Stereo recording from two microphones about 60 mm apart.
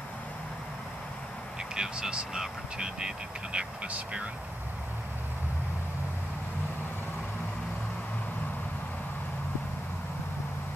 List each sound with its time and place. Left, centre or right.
1.6 s speech: centre